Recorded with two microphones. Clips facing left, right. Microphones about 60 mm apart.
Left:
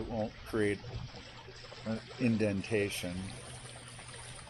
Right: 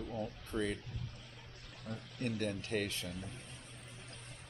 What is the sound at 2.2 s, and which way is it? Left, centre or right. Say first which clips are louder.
Speech: left 7 dB; left.